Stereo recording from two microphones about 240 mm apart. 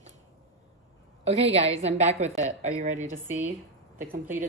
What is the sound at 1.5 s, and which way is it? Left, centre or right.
A woman's voice, right.